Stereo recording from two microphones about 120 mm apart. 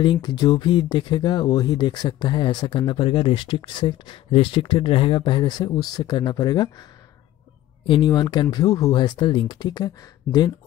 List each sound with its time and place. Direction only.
0.0 s speech: 40° left (ahead or behind)
7.8 s speech: 40° left (ahead or behind)